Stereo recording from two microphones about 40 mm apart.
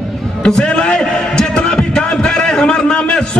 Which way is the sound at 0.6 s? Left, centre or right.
Left.